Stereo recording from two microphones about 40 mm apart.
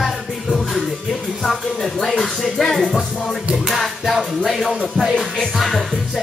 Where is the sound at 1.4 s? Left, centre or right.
Centre.